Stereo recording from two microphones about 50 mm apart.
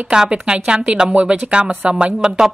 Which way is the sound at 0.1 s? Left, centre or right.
Centre.